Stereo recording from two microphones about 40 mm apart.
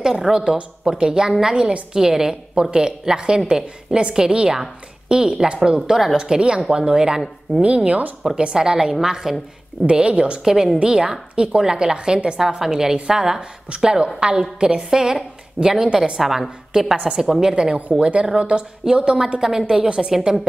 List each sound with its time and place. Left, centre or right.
0.0 s a woman's voice: centre
7.6 s speech: right
8.4 s a woman's voice: right
9.8 s a woman's voice: right
10.4 s a woman's voice: centre
15.8 s a woman's voice: right
16.2 s a woman's voice: centre